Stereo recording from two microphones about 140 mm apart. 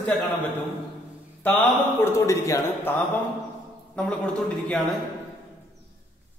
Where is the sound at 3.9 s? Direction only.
10° left (ahead or behind).